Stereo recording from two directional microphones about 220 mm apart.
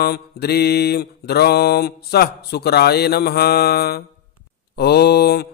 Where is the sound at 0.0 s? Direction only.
45° left (ahead or behind).